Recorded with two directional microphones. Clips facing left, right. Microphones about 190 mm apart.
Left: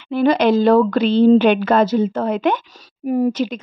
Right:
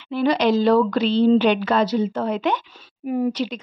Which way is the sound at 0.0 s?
50° left (ahead or behind).